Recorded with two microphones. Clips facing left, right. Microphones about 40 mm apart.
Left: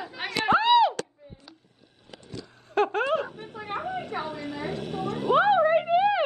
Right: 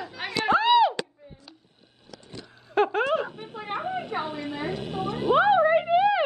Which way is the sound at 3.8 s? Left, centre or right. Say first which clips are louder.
Right 2 dB; right.